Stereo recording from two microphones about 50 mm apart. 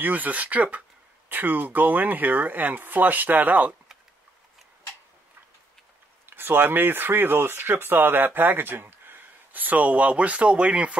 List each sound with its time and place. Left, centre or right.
0.0 s speech: right
1.3 s speech: right
6.3 s speech: right